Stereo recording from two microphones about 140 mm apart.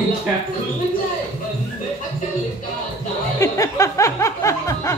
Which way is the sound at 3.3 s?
25° left (ahead or behind).